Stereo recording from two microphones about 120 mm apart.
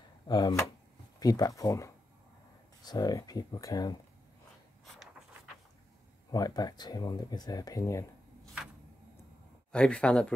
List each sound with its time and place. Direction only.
0.3 s speech: 30° left (ahead or behind)
6.3 s speech: 30° left (ahead or behind)
9.7 s speech: 10° left (ahead or behind)